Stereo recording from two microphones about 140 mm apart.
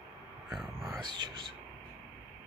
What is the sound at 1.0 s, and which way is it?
Speech, 35° right (ahead or behind).